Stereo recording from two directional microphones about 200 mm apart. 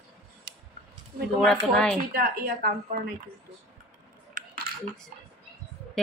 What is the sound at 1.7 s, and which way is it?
Speech, 5° left (ahead or behind).